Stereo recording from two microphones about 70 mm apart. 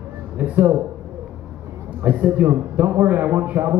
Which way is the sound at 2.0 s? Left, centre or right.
Right.